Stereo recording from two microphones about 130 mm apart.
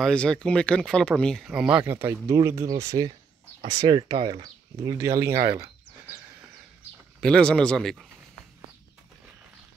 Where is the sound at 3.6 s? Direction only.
45° right (ahead or behind).